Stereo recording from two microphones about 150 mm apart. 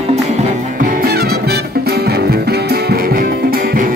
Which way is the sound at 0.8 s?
70° right (ahead or behind).